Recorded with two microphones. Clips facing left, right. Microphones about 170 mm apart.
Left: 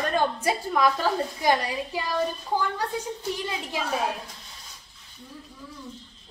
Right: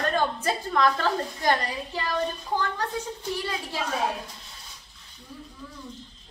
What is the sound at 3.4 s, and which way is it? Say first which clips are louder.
Speech: even; 15° left (ahead or behind).